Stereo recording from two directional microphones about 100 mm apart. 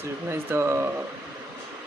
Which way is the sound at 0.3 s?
25° right (ahead or behind).